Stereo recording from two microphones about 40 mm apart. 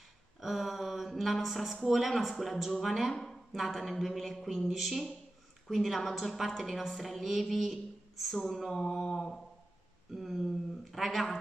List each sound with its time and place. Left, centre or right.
0.4 s a woman's voice: centre
9.0 s mantra: centre
10.1 s speech: centre